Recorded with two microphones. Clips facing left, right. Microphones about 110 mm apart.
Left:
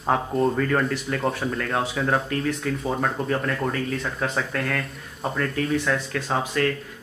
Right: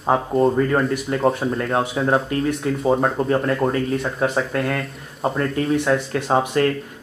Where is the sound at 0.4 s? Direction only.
25° right (ahead or behind).